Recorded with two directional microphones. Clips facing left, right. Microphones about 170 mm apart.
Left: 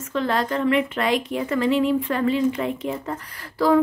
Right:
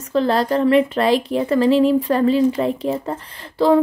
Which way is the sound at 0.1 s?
35° right (ahead or behind).